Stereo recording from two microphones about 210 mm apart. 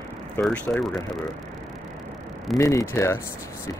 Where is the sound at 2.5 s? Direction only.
15° left (ahead or behind).